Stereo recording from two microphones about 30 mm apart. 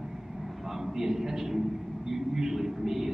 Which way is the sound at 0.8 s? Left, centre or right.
Centre.